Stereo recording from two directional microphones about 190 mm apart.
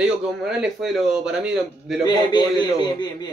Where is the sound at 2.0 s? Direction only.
20° left (ahead or behind).